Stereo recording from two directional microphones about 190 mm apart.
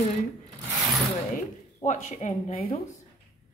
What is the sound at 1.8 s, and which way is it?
Speech, 40° left (ahead or behind).